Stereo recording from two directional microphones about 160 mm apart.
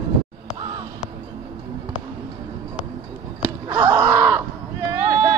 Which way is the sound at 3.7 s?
20° right (ahead or behind).